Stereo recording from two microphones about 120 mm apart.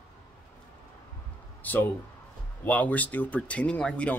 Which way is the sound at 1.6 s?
15° left (ahead or behind).